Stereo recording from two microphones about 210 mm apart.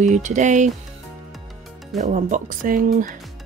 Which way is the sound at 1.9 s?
35° right (ahead or behind).